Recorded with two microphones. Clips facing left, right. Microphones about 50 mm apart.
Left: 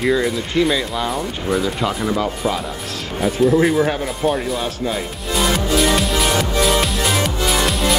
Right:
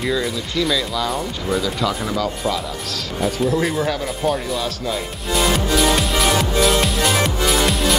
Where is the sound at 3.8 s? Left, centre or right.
Left.